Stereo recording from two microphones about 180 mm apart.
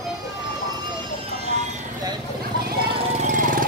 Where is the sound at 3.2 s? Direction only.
50° right (ahead or behind).